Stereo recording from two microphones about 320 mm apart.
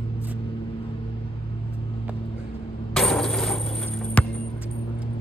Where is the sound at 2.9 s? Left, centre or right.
Centre.